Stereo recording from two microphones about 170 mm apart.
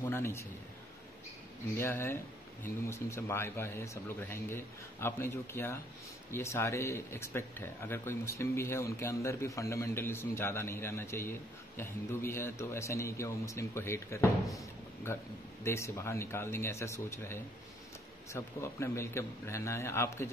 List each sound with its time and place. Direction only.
0.0 s a man's voice: 15° left (ahead or behind)
1.8 s speech: 10° left (ahead or behind)
15.6 s speech: 15° left (ahead or behind)